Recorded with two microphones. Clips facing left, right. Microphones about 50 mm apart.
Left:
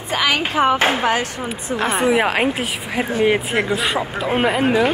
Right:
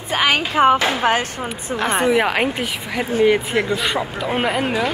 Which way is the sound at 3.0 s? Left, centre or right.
Left.